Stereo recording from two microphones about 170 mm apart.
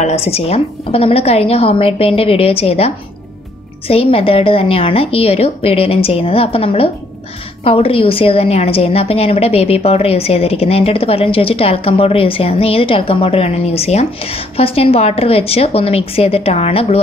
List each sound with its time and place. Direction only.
0.0 s a woman's voice: 35° left (ahead or behind)